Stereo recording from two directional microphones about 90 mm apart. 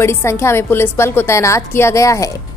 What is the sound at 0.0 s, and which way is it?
A woman's voice, 30° left (ahead or behind).